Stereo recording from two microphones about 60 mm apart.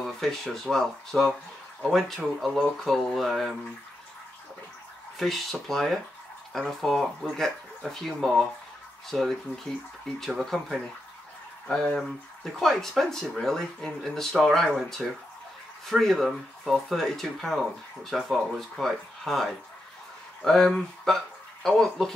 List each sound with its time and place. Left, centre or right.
0.0 s speech: centre
5.2 s speech: centre
10.4 s speech: centre